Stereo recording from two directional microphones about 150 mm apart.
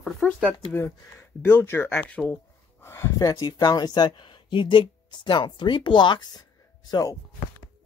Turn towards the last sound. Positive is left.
turn(degrees=25)  # may be behind; listen again after turning